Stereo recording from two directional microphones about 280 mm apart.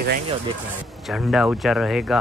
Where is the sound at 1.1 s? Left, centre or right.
Centre.